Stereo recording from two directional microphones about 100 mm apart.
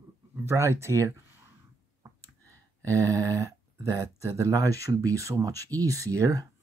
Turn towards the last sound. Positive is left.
turn(degrees=-35)  # may be behind; listen again after turning